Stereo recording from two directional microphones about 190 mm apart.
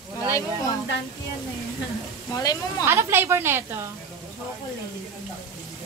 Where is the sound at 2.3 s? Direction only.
15° left (ahead or behind).